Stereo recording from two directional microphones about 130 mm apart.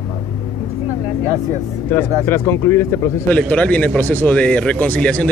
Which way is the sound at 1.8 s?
15° left (ahead or behind).